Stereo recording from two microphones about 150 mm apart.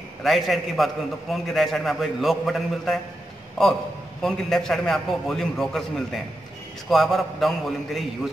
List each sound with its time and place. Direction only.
0.2 s a man's voice: centre (ahead or behind)